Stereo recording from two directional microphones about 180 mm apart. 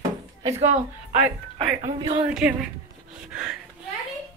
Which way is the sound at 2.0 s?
25° right (ahead or behind).